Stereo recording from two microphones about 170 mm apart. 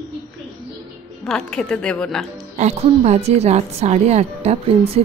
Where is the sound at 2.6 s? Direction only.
40° right (ahead or behind).